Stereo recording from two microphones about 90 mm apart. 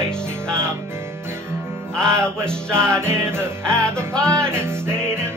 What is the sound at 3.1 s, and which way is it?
Music, 25° right (ahead or behind).